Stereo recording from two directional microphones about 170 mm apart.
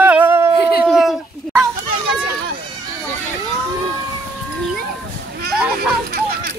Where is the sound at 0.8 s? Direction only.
Centre (ahead or behind).